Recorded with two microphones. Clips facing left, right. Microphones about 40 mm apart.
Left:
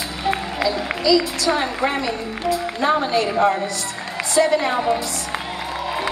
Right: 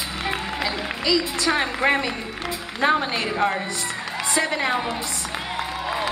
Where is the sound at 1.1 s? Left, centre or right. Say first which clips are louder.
Left 4 dB; right.